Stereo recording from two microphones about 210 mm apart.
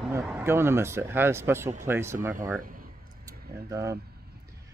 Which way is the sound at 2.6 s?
40° right (ahead or behind).